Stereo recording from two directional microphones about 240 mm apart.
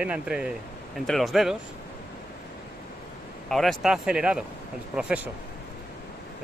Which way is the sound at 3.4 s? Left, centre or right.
Centre.